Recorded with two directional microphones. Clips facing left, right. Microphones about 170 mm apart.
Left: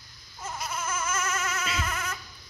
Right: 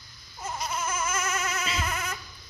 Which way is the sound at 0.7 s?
10° right (ahead or behind).